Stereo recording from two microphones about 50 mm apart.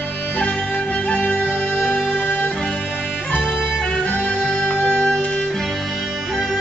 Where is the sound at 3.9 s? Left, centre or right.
Left.